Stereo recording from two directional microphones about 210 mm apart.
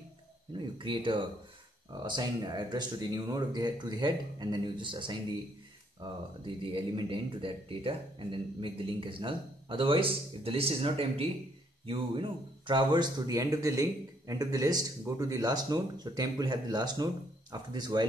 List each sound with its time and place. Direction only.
0.6 s speech: 25° right (ahead or behind)